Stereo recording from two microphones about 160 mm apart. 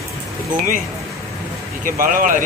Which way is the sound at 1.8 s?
60° right (ahead or behind).